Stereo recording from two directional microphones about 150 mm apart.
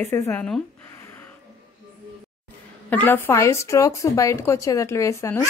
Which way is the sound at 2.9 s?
10° left (ahead or behind).